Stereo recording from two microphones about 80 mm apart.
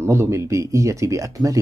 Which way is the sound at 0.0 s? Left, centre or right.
Right.